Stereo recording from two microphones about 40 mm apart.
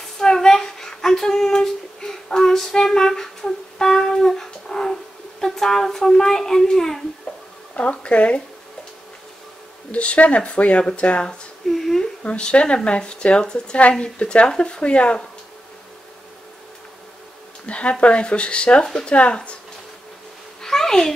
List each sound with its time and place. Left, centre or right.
0.2 s a sound: centre
5.4 s a child's voice: centre
7.7 s speech: left
9.8 s speech: left
11.6 s humming: centre
12.2 s speech: left
17.6 s a sound: left
18.0 s speech: left
20.6 s a sound: centre